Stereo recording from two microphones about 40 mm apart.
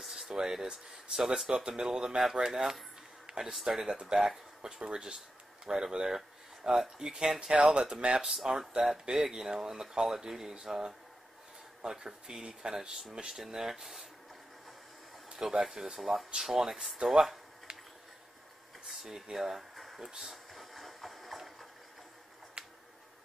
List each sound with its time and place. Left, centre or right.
0.0 s speech: centre
3.3 s a sound: centre
3.6 s speech: centre
8.3 s speech: centre; by 13.4 s right
13.4 s speech: centre
15.2 s speech: centre
18.9 s speech: centre
20.2 s train: centre
22.6 s tick: right